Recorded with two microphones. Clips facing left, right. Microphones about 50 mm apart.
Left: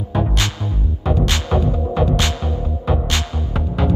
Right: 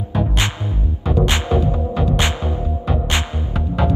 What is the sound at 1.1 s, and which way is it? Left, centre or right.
Music, centre.